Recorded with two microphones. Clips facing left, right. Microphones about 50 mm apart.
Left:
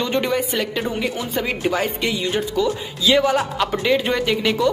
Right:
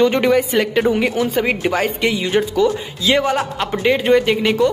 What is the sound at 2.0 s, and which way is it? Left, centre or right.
Speech, right.